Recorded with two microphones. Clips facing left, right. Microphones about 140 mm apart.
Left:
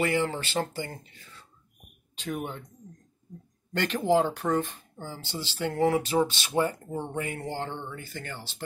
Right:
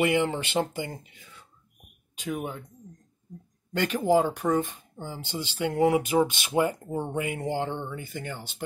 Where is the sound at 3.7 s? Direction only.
10° right (ahead or behind).